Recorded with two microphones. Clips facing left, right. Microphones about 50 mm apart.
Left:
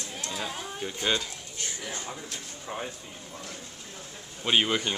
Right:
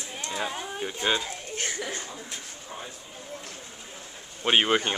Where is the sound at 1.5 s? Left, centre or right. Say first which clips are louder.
Right 4 dB; right.